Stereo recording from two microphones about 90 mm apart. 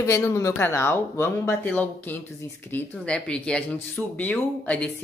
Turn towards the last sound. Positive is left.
turn(degrees=15)  # may be behind; listen again after turning